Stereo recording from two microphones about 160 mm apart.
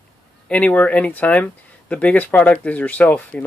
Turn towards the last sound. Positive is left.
turn(degrees=10)  # may be behind; listen again after turning